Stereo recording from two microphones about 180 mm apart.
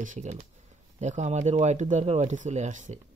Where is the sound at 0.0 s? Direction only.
40° right (ahead or behind).